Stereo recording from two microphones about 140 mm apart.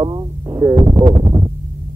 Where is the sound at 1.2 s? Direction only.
30° right (ahead or behind).